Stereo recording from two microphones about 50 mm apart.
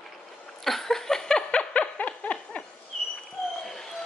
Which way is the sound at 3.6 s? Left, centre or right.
Centre.